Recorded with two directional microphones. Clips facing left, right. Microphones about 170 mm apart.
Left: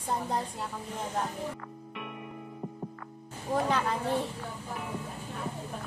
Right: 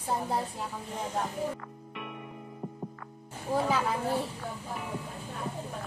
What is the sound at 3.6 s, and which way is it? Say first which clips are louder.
Speech: even; 5° right (ahead or behind).